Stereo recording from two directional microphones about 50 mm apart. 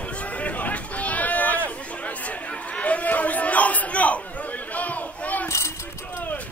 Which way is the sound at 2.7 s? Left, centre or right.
Left.